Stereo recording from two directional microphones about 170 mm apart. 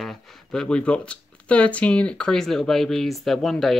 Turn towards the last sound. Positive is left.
turn(degrees=0)  # may be behind; listen again after turning